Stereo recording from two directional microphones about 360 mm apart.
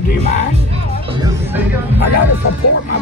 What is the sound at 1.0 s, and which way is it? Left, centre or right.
Music, centre.